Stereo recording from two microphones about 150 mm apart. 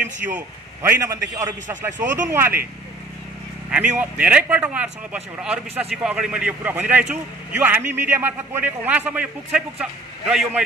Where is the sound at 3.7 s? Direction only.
10° right (ahead or behind).